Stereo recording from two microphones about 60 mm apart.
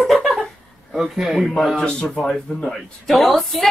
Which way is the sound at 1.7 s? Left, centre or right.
Centre.